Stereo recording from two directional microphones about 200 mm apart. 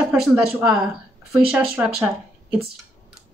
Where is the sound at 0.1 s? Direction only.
5° right (ahead or behind).